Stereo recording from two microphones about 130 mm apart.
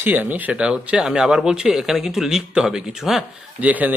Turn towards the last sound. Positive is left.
turn(degrees=-10)  # may be behind; listen again after turning